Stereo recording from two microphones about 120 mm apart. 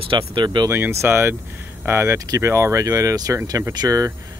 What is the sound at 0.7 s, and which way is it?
Speech, 20° right (ahead or behind).